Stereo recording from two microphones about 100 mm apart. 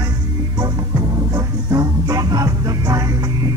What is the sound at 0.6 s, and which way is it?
Music, 35° right (ahead or behind).